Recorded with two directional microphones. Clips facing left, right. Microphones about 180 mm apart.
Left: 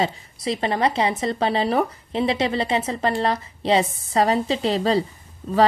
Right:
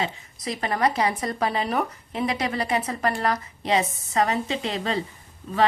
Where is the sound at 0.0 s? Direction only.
30° left (ahead or behind).